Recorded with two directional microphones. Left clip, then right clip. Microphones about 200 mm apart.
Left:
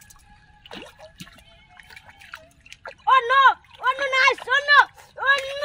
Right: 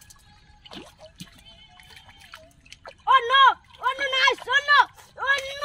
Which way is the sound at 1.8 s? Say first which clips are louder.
Left 5 dB; 10° left (ahead or behind).